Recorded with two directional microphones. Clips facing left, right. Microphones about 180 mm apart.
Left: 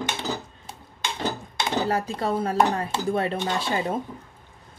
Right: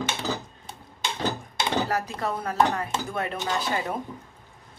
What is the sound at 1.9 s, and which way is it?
A woman's voice, 30° left (ahead or behind).